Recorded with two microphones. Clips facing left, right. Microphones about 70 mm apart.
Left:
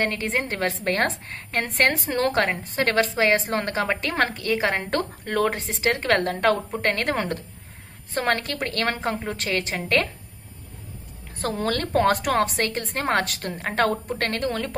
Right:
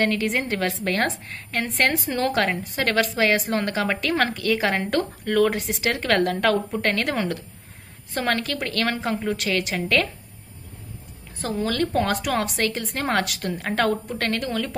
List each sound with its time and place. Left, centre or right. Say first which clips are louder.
0.0 s a woman's voice: right 2 dB; left
9.2 s a woman's voice: right 2 dB; left
11.4 s a woman's voice: right 1 dB; left